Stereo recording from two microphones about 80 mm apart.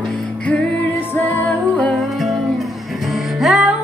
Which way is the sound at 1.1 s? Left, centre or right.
Centre.